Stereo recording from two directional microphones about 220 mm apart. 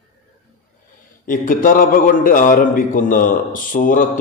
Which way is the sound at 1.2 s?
40° left (ahead or behind).